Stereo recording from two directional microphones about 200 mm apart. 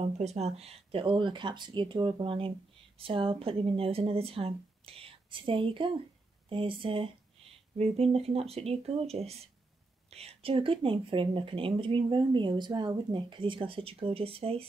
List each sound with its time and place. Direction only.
0.0 s speech: 35° right (ahead or behind)